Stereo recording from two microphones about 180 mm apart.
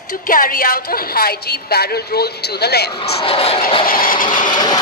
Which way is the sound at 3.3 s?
30° left (ahead or behind).